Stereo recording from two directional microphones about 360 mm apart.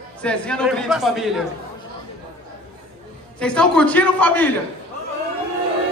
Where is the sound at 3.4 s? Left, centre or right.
Centre.